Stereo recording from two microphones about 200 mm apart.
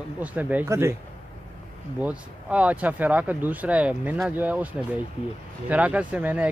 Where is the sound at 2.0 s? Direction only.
5° right (ahead or behind).